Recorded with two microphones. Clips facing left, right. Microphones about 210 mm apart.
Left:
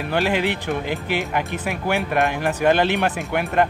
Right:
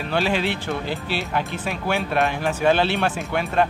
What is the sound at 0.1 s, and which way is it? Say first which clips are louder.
Speech: left 1 dB; 15° left (ahead or behind).